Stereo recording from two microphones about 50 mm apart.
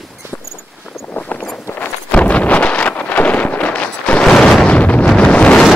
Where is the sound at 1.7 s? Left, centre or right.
Left.